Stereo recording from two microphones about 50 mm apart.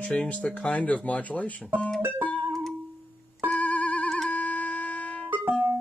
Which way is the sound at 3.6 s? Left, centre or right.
Left.